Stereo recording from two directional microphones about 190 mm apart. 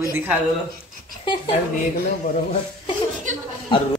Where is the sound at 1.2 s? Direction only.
25° left (ahead or behind).